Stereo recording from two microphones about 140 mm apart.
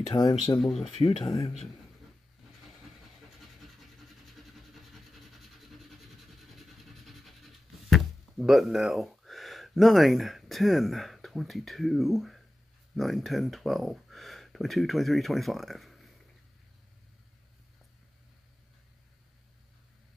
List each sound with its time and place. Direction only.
0.1 s speech: 30° left (ahead or behind)
0.6 s speech: centre (ahead or behind)
0.8 s speech: 45° left (ahead or behind)
4.7 s rub: centre (ahead or behind)
6.5 s a sound: centre (ahead or behind)
7.9 s speech: centre (ahead or behind)